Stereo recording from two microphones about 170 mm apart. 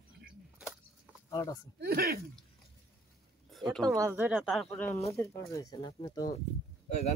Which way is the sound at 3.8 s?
20° right (ahead or behind).